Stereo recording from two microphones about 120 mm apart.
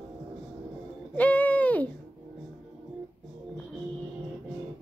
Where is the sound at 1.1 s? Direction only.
10° left (ahead or behind).